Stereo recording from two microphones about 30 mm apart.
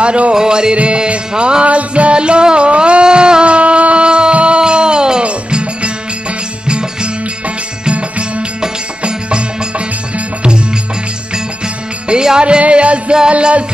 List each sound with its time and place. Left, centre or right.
0.0 s music: right
0.3 s music: right
1.6 s music: right
2.1 s music: right
3.4 s a sound: right
5.2 s music: right
12.1 s music: right